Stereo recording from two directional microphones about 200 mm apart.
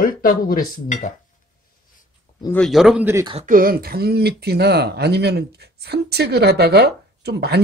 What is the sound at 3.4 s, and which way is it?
Speech, 45° right (ahead or behind).